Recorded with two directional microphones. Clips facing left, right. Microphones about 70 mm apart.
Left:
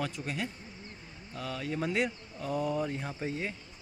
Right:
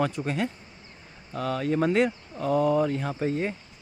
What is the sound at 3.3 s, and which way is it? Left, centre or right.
Speech, right.